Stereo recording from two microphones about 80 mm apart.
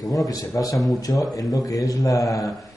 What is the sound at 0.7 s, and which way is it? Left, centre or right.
Speech, centre.